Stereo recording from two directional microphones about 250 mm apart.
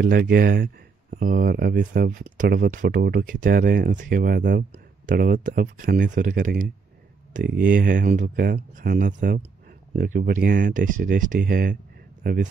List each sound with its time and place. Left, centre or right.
0.0 s speech: right